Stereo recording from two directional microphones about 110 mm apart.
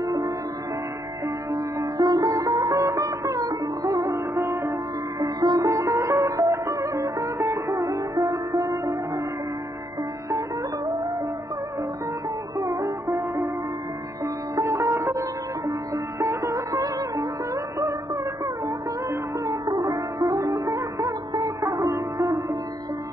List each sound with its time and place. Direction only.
0.0 s music: 35° right (ahead or behind)
1.5 s sitar: 35° right (ahead or behind)
5.2 s music: 35° right (ahead or behind)
12.5 s sitar: 30° right (ahead or behind)
14.5 s music: 30° right (ahead or behind)
19.4 s sitar: 35° right (ahead or behind)